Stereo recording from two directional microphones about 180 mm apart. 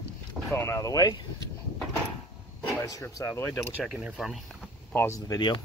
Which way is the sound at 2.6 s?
15° left (ahead or behind).